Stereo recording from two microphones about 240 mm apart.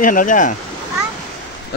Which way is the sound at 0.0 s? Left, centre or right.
Left.